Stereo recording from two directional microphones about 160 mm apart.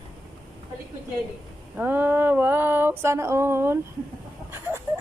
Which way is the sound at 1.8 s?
10° right (ahead or behind).